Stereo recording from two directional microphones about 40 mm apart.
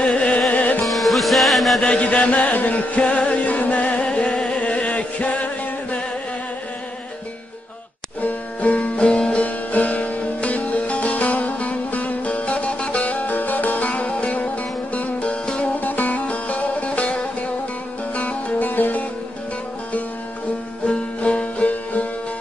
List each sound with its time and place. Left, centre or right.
0.1 s music: left
0.8 s music: centre
2.0 s music: left
4.6 s chant: left
8.2 s music: left
20.8 s music: left